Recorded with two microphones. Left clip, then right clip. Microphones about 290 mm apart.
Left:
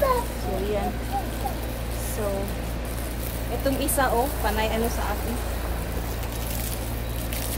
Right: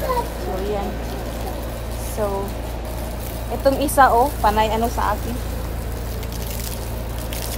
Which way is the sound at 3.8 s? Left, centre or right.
Right.